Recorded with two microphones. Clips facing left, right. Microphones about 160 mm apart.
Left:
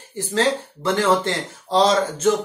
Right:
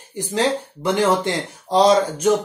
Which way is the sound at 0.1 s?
15° right (ahead or behind).